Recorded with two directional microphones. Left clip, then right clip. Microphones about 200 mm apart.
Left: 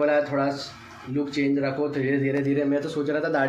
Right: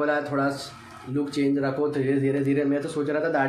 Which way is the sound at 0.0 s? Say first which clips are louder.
Left 2 dB; 15° right (ahead or behind).